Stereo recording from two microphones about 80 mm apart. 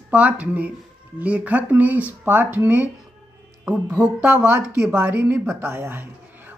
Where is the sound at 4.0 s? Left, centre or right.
Centre.